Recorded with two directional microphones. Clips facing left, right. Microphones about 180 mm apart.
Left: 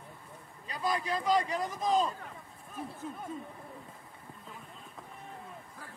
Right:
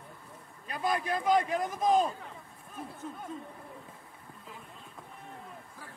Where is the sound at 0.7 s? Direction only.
55° right (ahead or behind).